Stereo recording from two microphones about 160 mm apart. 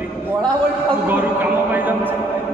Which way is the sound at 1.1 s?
10° right (ahead or behind).